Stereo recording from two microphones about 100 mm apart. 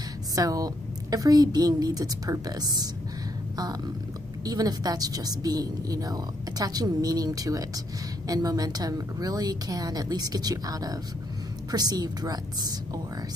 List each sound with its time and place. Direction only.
0.4 s a woman's voice: 35° right (ahead or behind)
4.5 s a woman's voice: 40° right (ahead or behind)